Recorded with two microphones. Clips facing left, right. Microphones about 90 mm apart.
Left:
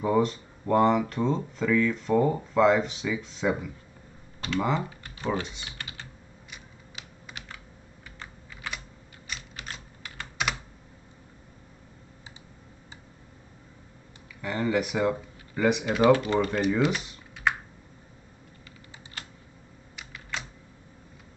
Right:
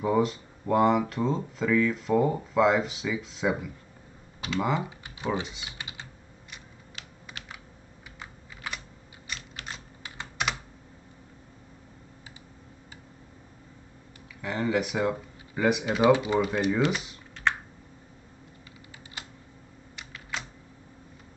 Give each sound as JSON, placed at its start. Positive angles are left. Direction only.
{"t": 0.0, "sound": "speech", "side_deg": -5}
{"t": 5.4, "sound": "speech", "side_deg": -5}
{"t": 5.8, "sound": "typing", "side_deg": -15}
{"t": 8.2, "sound": "computer keyboard", "side_deg": -5}
{"t": 9.3, "sound": "biting", "side_deg": 0}
{"t": 14.4, "sound": "speech", "side_deg": 0}
{"t": 16.1, "sound": "speech", "side_deg": -15}
{"t": 16.9, "sound": "computer keyboard", "side_deg": 0}
{"t": 20.0, "sound": "typing", "side_deg": 0}